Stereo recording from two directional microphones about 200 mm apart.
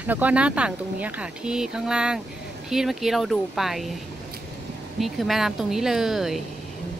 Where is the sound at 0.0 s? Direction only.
10° right (ahead or behind).